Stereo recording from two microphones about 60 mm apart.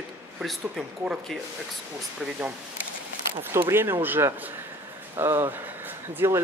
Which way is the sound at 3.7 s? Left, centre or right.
Right.